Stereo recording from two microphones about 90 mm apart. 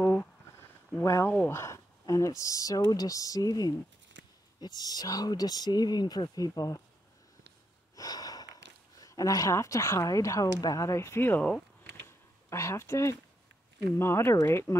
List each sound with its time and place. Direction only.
1.0 s speech: 30° left (ahead or behind)
7.9 s gasp: 45° left (ahead or behind)
9.0 s speech: 40° left (ahead or behind); by 11.5 s 20° left (ahead or behind)
12.4 s speech: 35° left (ahead or behind)